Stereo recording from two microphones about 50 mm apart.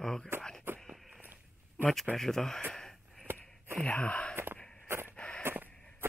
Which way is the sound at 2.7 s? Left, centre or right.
Centre.